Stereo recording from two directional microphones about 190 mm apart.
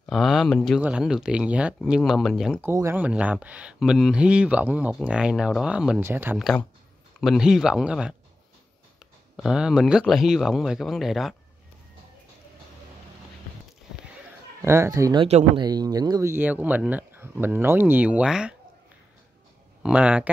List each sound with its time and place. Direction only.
0.0 s speech: centre (ahead or behind)
2.6 s speech: 15° right (ahead or behind)
9.4 s speech: 5° right (ahead or behind)
14.6 s speech: 15° right (ahead or behind)
15.2 s speech: 35° right (ahead or behind)
15.6 s speech: 20° right (ahead or behind); by 18.6 s 5° right (ahead or behind)
19.8 s speech: 5° right (ahead or behind)